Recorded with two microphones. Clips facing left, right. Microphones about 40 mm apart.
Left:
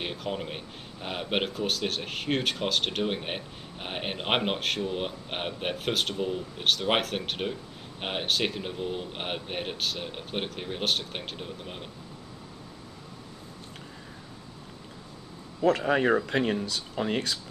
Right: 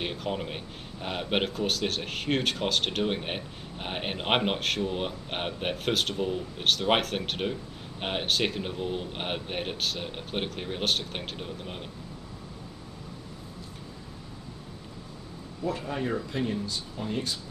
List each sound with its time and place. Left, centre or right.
0.0 s speech: centre
15.6 s speech: left